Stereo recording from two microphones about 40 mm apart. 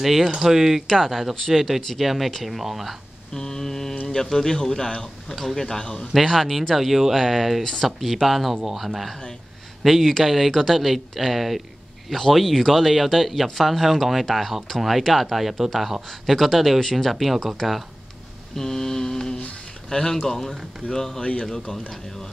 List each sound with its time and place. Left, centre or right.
0.0 s speech: centre
3.3 s speech: centre
6.2 s speech: centre
6.7 s speech: centre
18.6 s a sound: centre
19.9 s speech: centre
21.2 s speech: left